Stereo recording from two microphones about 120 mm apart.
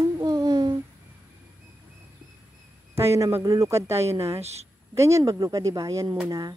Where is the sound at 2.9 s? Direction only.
20° right (ahead or behind).